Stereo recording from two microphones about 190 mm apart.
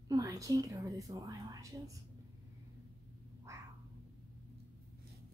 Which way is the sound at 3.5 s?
15° right (ahead or behind).